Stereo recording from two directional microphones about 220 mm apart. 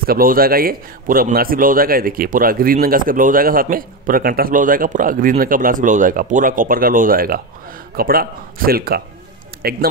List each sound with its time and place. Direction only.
0.0 s a man's voice: 40° right (ahead or behind)